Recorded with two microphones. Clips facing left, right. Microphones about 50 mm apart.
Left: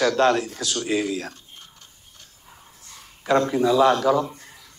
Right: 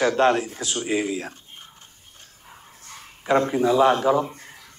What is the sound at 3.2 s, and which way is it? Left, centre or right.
A man's voice, right.